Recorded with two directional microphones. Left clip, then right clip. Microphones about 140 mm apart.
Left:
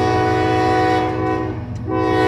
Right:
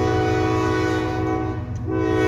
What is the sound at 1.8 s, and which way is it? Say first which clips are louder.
Vehicle: left 4 dB; 25° left (ahead or behind).